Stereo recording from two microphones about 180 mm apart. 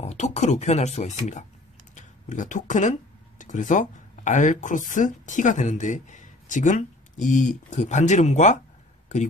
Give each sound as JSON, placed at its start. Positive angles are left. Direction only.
{"t": 0.0, "sound": "speech", "side_deg": 40}